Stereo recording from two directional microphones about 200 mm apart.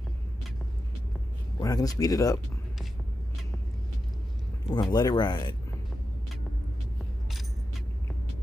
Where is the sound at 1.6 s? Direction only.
20° left (ahead or behind).